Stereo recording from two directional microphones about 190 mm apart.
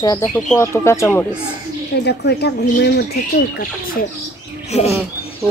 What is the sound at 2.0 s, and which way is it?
Speech, 60° left (ahead or behind).